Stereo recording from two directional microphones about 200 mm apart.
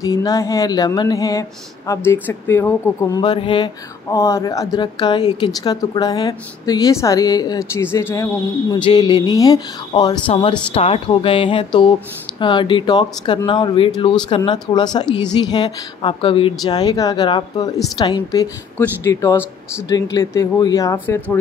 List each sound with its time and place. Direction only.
0.0 s speech: 15° left (ahead or behind)